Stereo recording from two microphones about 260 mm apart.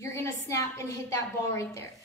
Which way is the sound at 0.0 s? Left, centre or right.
Centre.